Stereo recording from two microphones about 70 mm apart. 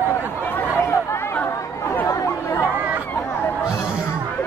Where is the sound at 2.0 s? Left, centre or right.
Left.